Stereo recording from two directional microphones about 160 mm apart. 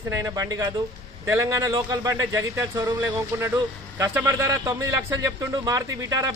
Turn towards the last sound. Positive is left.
turn(degrees=-25)  # may be behind; listen again after turning